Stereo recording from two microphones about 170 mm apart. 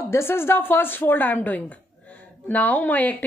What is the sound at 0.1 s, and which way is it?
A woman's voice, 15° left (ahead or behind).